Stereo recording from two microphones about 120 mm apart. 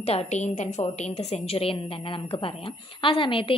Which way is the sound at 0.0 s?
65° left (ahead or behind).